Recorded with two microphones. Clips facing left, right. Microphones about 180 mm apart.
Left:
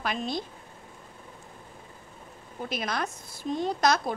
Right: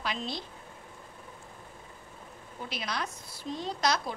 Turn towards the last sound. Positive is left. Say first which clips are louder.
# left 5 dB
turn(degrees=50)  # may be behind; listen again after turning